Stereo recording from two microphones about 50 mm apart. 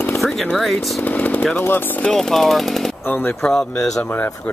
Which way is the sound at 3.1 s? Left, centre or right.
Left.